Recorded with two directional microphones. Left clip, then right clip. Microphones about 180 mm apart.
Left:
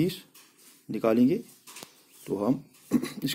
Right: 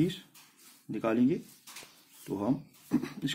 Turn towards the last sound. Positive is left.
turn(degrees=15)  # may be behind; listen again after turning